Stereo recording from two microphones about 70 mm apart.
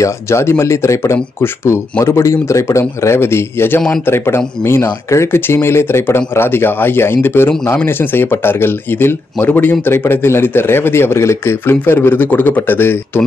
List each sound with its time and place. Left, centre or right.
0.0 s speech: left